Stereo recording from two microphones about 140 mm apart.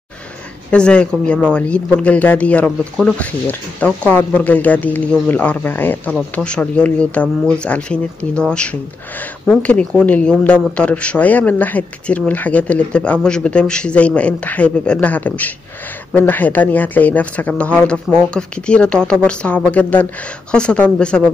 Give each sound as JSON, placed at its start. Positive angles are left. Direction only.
{"t": 0.7, "sound": "speech", "side_deg": 5}